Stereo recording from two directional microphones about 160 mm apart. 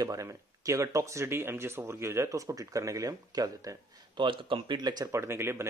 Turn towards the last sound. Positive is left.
turn(degrees=-15)  # may be behind; listen again after turning